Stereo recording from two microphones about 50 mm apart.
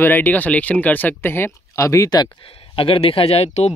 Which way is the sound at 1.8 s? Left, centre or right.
Left.